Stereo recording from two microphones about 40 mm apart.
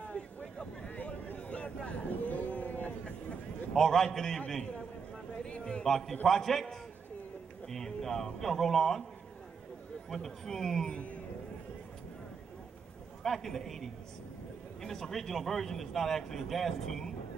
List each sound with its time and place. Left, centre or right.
0.0 s vehicle: left
0.8 s a sound: left
3.7 s speech: centre
5.4 s a sound: left
5.9 s speech: centre
10.0 s speech: centre
13.2 s speech: centre